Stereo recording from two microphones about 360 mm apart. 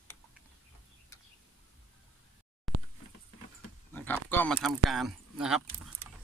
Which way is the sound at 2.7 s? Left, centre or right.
Centre.